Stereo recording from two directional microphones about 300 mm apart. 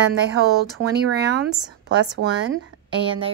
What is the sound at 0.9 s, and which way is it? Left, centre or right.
Speech, right.